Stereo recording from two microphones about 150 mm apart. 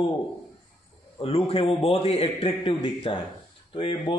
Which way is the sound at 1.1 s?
40° left (ahead or behind).